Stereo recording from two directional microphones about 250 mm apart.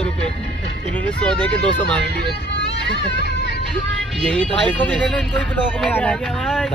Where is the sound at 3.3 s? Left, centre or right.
Left.